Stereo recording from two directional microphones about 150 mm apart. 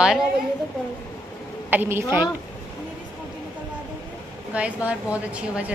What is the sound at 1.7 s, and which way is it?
Speech, 15° right (ahead or behind).